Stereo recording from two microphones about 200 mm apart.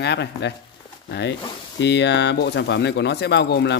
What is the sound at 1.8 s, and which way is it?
Speech, 60° left (ahead or behind).